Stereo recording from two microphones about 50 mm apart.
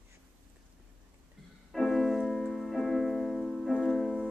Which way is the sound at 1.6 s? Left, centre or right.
Centre.